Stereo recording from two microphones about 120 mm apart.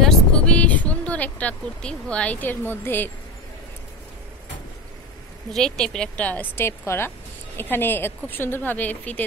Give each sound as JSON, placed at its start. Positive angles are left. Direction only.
{"t": 0.0, "sound": "speech", "side_deg": 5}
{"t": 5.5, "sound": "a woman's voice", "side_deg": 5}